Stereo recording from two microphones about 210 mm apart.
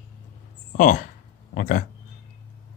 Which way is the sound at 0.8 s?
40° left (ahead or behind).